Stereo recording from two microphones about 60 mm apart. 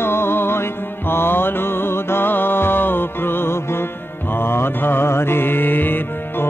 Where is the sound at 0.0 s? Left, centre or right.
Left.